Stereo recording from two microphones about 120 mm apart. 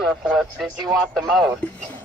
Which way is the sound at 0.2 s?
5° right (ahead or behind).